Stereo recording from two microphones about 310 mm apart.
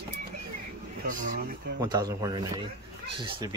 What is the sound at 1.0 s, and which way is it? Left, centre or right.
Speech, right.